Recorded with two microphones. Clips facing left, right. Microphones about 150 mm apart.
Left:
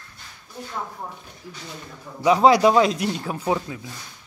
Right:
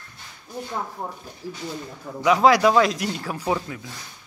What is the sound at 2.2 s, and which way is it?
A man's voice, 30° left (ahead or behind).